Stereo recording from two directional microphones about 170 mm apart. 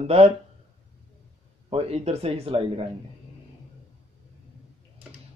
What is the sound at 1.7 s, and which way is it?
Speech, 35° right (ahead or behind).